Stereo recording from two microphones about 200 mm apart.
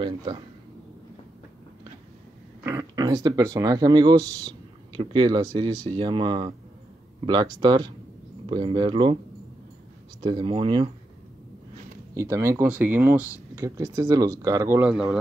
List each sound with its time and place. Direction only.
0.0 s speech: 25° right (ahead or behind)
2.6 s speech: 15° right (ahead or behind)
10.2 s speech: 25° right (ahead or behind)
12.1 s speech: 15° right (ahead or behind)